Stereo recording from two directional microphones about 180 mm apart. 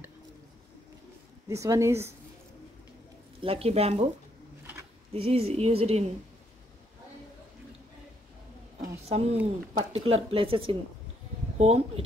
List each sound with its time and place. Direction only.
1.5 s speech: 15° right (ahead or behind)
3.3 s a woman's voice: 30° right (ahead or behind)
5.1 s a woman's voice: 35° right (ahead or behind)
9.1 s a woman's voice: 35° right (ahead or behind)